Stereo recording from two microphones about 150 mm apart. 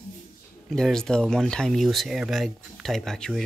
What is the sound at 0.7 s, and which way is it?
Speech, 5° left (ahead or behind).